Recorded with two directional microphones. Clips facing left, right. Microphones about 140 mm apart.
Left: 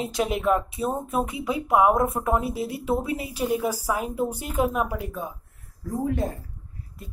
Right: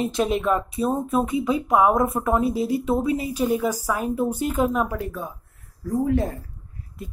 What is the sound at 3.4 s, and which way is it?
A woman's voice, 15° left (ahead or behind).